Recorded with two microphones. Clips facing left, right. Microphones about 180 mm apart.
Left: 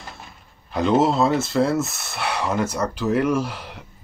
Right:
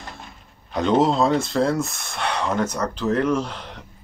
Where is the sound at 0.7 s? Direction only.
5° left (ahead or behind).